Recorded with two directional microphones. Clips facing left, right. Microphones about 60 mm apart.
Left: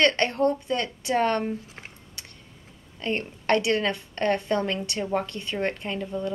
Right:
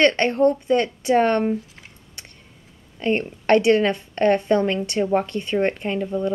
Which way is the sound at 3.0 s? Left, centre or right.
Right.